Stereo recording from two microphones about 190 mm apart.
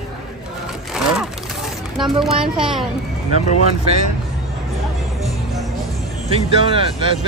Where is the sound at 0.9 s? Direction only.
Centre (ahead or behind).